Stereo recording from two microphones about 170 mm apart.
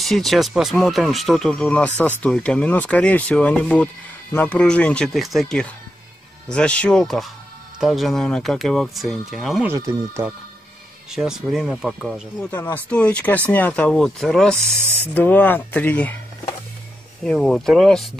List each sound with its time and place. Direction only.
0.0 s speech: centre (ahead or behind)
9.7 s speech: 20° right (ahead or behind)
11.1 s speech: 5° right (ahead or behind)
17.2 s speech: 5° left (ahead or behind)